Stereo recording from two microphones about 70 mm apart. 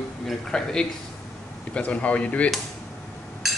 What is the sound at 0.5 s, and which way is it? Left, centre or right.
Speech, centre.